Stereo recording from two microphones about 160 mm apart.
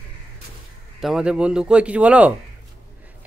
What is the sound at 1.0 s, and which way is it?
Speech, 5° right (ahead or behind).